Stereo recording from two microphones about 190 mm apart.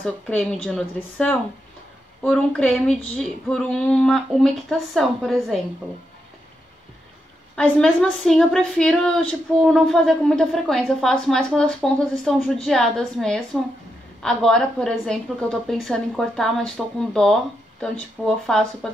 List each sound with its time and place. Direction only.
0.0 s a woman's voice: 5° left (ahead or behind)
7.5 s a woman's voice: 5° left (ahead or behind)